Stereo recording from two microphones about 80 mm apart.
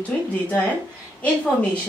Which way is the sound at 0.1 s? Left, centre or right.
Centre.